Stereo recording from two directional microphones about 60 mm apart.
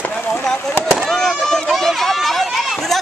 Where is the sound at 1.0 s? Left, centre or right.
Centre.